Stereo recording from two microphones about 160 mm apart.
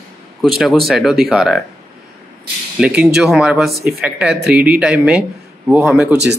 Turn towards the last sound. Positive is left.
turn(degrees=-5)  # may be behind; listen again after turning